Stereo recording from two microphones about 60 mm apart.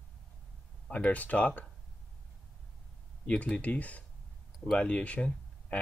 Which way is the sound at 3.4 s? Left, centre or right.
Left.